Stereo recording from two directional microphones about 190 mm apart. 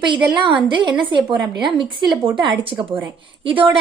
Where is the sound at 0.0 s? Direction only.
25° right (ahead or behind).